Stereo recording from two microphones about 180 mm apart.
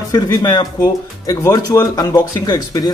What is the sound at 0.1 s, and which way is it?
Speech, 20° left (ahead or behind).